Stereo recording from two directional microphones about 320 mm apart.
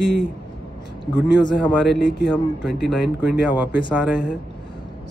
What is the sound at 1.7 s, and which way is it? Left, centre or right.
Speech, centre.